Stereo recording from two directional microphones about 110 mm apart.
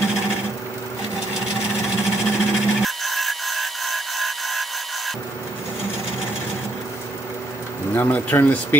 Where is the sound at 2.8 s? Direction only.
Centre (ahead or behind).